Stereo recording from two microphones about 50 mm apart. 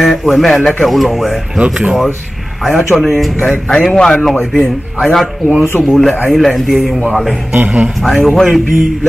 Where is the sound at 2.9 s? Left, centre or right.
Centre.